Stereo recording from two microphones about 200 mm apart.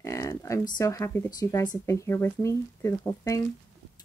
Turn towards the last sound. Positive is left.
turn(degrees=15)  # may be behind; listen again after turning